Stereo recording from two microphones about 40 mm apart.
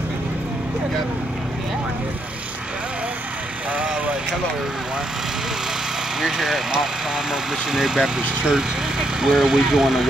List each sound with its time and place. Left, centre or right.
3.7 s vehicle: right
6.2 s speech: centre
7.7 s speech: centre
8.2 s speech: right
9.2 s speech: centre